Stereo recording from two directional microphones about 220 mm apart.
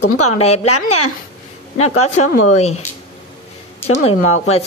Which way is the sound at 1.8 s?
85° left.